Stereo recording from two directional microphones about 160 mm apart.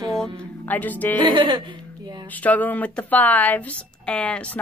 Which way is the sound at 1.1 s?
30° right (ahead or behind).